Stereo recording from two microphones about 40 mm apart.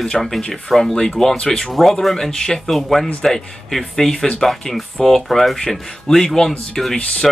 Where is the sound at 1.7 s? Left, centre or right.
Centre.